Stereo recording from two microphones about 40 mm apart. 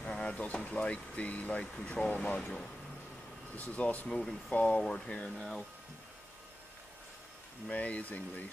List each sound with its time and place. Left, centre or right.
0.0 s a sound: left
0.7 s speech: left
1.9 s speech: left
3.5 s speech: left
4.1 s speech: centre
4.5 s speech: left
7.7 s speech: left